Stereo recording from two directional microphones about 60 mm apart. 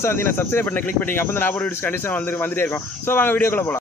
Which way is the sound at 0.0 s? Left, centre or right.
Left.